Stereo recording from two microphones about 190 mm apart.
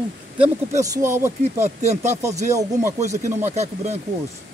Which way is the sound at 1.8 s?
40° right (ahead or behind).